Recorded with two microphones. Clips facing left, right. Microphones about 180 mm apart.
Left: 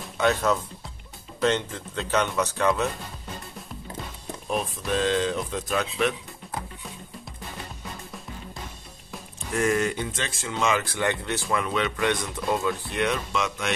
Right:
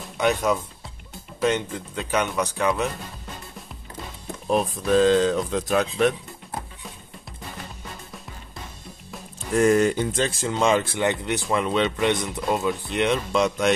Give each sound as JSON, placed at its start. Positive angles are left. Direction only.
{"t": 0.2, "sound": "speech", "side_deg": -15}
{"t": 5.0, "sound": "speech", "side_deg": -40}
{"t": 9.6, "sound": "speech", "side_deg": -35}
{"t": 13.3, "sound": "speech", "side_deg": -35}